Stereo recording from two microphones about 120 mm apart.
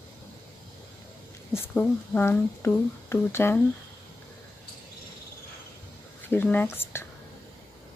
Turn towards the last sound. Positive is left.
turn(degrees=20)  # may be behind; listen again after turning